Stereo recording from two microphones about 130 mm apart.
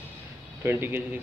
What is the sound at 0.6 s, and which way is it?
Speech, 15° right (ahead or behind).